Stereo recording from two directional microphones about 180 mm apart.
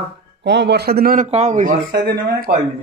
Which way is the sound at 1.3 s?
40° right (ahead or behind).